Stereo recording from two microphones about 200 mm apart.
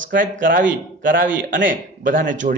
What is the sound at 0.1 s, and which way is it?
Speech, 45° right (ahead or behind).